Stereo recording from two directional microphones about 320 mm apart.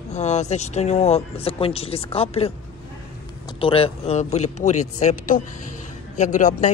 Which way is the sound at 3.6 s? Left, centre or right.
Centre.